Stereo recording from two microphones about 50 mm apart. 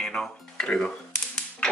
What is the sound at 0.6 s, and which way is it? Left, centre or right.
Speech, left.